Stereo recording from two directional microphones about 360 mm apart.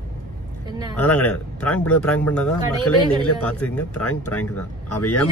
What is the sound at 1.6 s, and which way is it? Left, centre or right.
Speech, centre.